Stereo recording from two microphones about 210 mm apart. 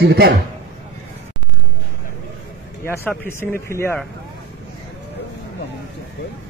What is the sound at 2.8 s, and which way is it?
Speech, 10° left (ahead or behind).